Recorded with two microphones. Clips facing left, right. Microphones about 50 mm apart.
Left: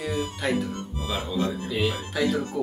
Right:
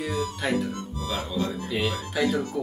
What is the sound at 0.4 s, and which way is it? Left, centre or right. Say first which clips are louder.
Speech: even; centre.